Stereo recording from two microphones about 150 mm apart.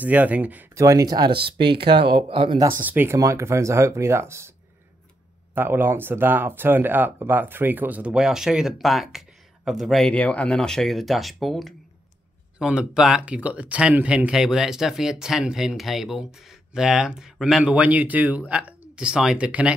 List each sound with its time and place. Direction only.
0.0 s speech: 10° right (ahead or behind); by 2.6 s 35° right (ahead or behind)
2.6 s speech: 15° right (ahead or behind)
5.5 s speech: 15° right (ahead or behind)